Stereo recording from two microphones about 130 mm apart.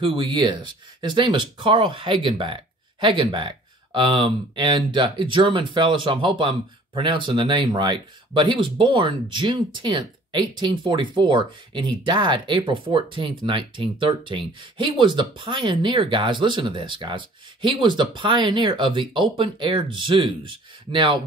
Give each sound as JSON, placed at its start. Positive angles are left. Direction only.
{"t": 0.0, "sound": "speech", "side_deg": -40}